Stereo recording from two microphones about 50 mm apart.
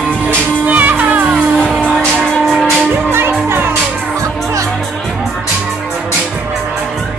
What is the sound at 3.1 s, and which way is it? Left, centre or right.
Music, right.